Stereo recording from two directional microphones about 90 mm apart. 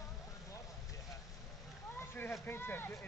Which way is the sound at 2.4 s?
25° left (ahead or behind).